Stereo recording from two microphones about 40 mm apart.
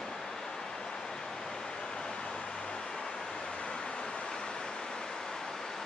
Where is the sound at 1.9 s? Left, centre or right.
Centre.